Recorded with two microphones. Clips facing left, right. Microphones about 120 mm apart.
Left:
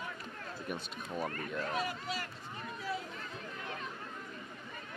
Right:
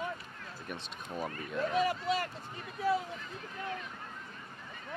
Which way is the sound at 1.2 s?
45° left (ahead or behind).